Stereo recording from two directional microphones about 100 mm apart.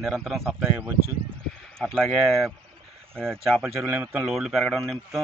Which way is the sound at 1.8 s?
Centre (ahead or behind).